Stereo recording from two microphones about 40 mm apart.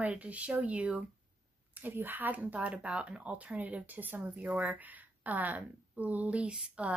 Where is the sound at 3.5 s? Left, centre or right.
Right.